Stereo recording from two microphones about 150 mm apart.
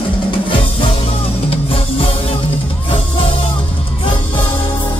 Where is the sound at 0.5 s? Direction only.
35° left (ahead or behind).